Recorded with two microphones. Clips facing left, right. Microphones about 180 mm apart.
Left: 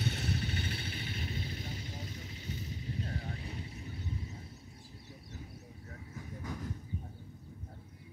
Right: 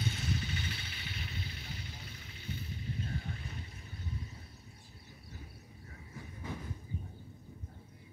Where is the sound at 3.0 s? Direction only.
30° left (ahead or behind).